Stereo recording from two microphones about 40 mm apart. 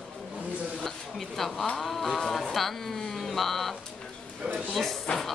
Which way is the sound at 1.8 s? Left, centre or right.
Centre.